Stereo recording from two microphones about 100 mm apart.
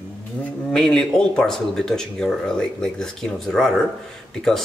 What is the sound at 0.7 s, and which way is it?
Speech, 5° left (ahead or behind).